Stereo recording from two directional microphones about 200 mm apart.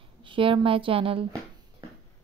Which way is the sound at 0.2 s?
25° right (ahead or behind).